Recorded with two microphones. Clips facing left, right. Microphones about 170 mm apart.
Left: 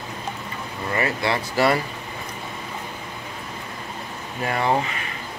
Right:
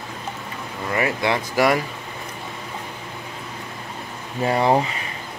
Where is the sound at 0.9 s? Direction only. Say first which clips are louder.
Right 2 dB; 15° right (ahead or behind).